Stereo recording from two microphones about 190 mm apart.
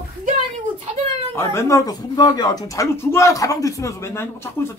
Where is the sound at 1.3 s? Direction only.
15° left (ahead or behind).